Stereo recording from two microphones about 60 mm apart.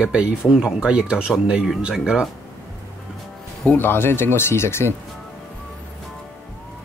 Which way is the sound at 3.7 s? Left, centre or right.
Left.